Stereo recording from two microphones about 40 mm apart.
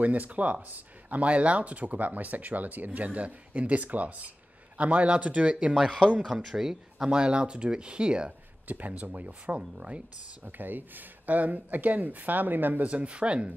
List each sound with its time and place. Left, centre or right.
0.0 s speech: right
6.5 s speech: centre
8.6 s speech: right
9.6 s speech: right
10.4 s speech: right
12.8 s speech: right